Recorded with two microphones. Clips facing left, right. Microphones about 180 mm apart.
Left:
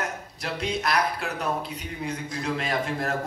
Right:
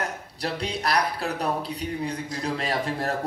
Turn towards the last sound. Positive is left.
turn(degrees=-35)  # may be behind; listen again after turning